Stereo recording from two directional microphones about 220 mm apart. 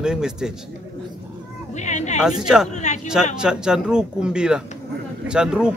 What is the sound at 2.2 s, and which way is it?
Speech, centre (ahead or behind).